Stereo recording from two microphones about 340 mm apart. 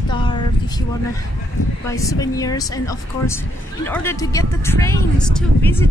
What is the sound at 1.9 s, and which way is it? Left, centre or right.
Speech, centre.